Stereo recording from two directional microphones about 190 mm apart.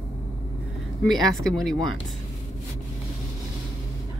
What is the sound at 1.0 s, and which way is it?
Speech, centre (ahead or behind).